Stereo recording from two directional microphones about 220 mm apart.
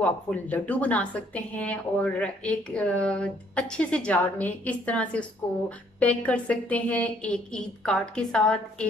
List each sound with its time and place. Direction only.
0.0 s a woman's voice: 5° left (ahead or behind)